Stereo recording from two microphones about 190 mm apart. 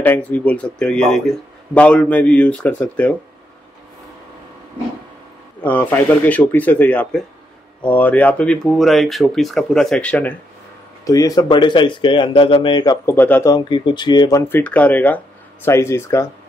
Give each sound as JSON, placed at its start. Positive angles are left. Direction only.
{"t": 0.0, "sound": "a man's voice", "side_deg": 10}
{"t": 5.6, "sound": "a man's voice", "side_deg": 10}
{"t": 11.1, "sound": "speech", "side_deg": 20}
{"t": 14.6, "sound": "a man's voice", "side_deg": 10}